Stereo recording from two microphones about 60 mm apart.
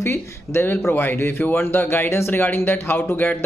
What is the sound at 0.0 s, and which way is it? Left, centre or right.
Speech, left.